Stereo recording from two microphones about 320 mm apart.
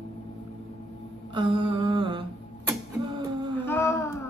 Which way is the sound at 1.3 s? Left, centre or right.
Centre.